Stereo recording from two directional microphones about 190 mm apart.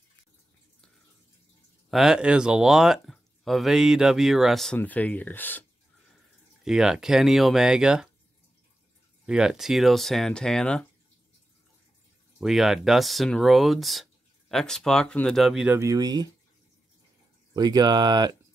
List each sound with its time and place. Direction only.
1.9 s speech: centre (ahead or behind)
6.6 s speech: 5° right (ahead or behind)
9.2 s speech: 5° right (ahead or behind)
12.4 s speech: centre (ahead or behind); by 16.3 s 20° right (ahead or behind)
17.6 s speech: 20° right (ahead or behind)